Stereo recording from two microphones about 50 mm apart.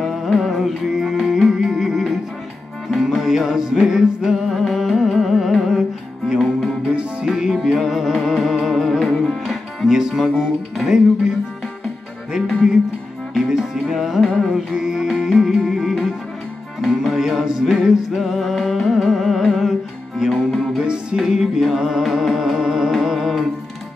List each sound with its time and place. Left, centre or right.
0.0 s music: centre
4.6 s music: centre
6.9 s music: right
7.2 s music: centre
20.8 s music: centre
21.2 s music: centre